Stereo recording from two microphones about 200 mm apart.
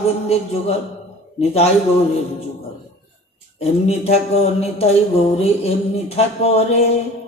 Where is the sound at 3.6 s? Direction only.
30° left (ahead or behind).